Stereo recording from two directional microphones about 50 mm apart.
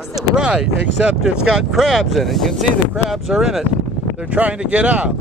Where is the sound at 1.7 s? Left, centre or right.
Centre.